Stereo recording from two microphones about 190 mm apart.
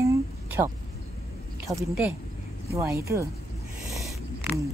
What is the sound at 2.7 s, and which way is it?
Speech, 15° right (ahead or behind).